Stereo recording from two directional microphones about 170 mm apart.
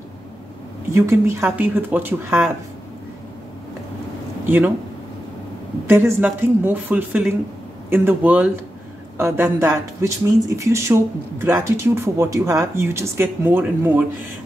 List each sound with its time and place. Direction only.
0.9 s speech: 15° right (ahead or behind)
4.5 s speech: 10° right (ahead or behind)
5.9 s speech: 15° right (ahead or behind)